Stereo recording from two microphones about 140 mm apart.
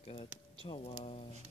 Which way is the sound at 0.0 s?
45° left (ahead or behind).